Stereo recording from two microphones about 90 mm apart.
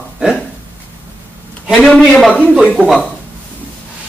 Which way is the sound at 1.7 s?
5° right (ahead or behind).